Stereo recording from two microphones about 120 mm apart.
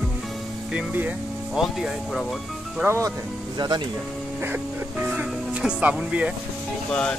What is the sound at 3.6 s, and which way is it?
Speech, 35° right (ahead or behind).